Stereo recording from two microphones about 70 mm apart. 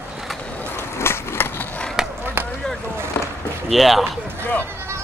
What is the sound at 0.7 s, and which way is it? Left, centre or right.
Skateboard, left.